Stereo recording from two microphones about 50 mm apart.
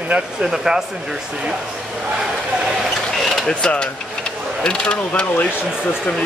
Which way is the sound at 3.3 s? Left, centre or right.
Centre.